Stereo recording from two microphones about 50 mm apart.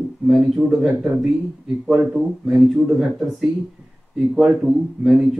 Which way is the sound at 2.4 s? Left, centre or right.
Centre.